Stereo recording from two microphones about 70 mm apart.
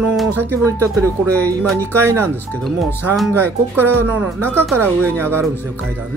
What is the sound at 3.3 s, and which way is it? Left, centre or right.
Speech, right.